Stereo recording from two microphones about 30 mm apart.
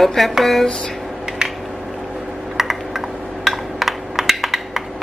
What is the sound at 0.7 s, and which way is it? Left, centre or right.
Speech, left.